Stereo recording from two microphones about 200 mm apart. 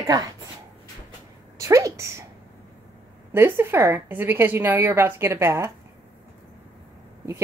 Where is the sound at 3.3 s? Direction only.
10° right (ahead or behind).